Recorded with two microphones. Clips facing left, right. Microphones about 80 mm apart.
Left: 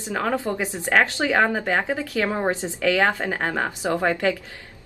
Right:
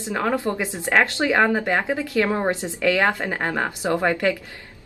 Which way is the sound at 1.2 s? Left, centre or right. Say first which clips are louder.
Right 2 dB; centre.